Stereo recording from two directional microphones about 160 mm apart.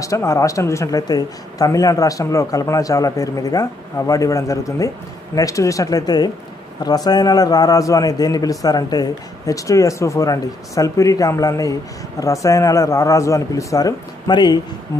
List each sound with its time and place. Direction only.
0.0 s speech: 20° left (ahead or behind)